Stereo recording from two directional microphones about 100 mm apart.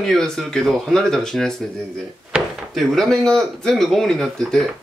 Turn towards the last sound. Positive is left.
turn(degrees=0)  # may be behind; listen again after turning